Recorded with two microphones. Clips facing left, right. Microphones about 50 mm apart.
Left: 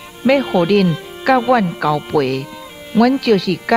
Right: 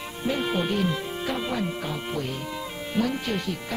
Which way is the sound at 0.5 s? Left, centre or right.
Left.